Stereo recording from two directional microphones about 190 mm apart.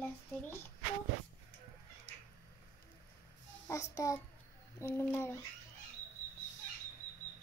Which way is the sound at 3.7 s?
15° left (ahead or behind).